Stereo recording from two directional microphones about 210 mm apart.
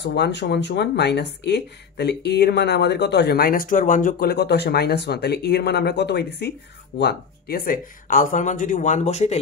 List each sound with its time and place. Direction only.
0.0 s speech: 55° left (ahead or behind); by 9.4 s 30° left (ahead or behind)